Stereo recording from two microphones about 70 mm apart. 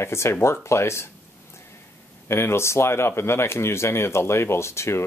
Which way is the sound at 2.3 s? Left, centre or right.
Left.